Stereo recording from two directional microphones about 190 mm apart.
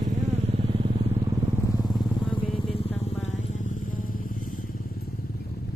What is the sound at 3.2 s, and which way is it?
Music, 40° left (ahead or behind).